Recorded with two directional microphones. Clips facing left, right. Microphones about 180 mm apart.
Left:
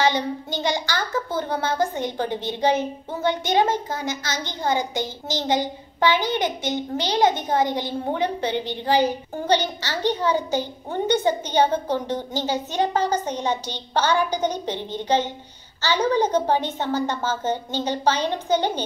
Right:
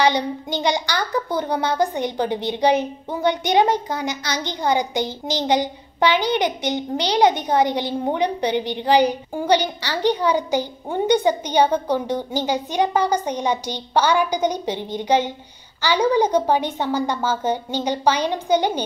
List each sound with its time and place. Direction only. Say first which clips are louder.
0.0 s a child's voice: right 2 dB; 15° right (ahead or behind)